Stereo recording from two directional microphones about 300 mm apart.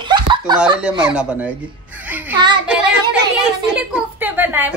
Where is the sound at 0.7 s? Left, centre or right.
Centre.